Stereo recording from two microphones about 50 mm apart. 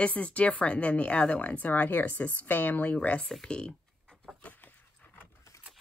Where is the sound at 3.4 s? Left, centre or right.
Centre.